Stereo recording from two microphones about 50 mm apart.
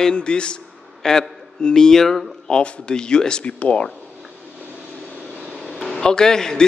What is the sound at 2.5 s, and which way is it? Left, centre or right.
Speech, left.